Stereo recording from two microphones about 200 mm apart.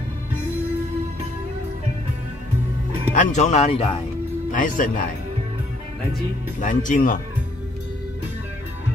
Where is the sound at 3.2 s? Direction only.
35° left (ahead or behind).